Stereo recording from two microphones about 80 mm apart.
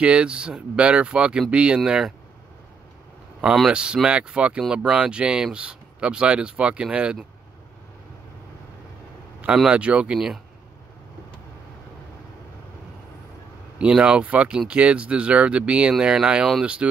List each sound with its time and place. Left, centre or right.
0.0 s speech: centre
3.7 s speech: centre
9.7 s speech: centre
13.7 s speech: centre